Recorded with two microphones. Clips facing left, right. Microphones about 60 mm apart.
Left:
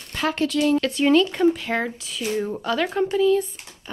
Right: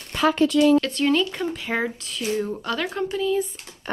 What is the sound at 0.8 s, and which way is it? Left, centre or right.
Speech, centre.